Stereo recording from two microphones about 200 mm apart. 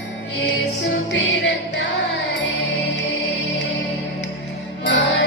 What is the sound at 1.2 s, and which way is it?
Music, 65° left (ahead or behind).